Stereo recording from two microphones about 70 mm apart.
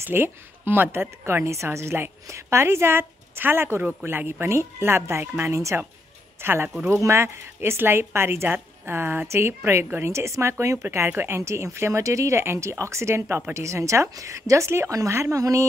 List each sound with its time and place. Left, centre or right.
0.0 s a woman's voice: right
6.4 s a woman's voice: right
6.9 s a woman's voice: right